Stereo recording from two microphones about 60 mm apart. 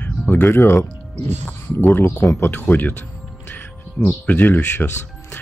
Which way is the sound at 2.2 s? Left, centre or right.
Left.